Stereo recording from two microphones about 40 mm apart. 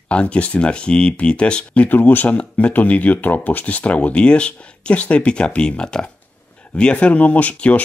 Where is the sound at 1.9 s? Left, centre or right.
Left.